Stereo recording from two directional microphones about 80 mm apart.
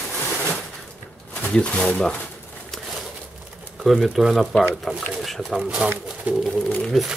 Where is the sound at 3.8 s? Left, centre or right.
Centre.